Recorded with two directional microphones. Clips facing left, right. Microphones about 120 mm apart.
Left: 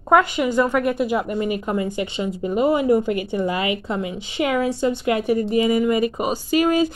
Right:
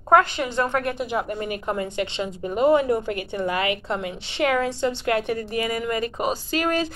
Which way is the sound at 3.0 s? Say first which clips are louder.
Left 5 dB; 50° right (ahead or behind).